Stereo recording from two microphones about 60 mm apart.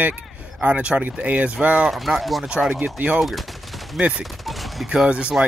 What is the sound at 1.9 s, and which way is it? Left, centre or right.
Speech, centre.